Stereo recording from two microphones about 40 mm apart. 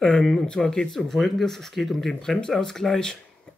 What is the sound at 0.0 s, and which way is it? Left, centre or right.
Speech, left.